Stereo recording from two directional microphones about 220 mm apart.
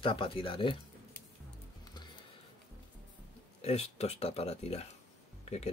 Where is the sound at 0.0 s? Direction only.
25° left (ahead or behind).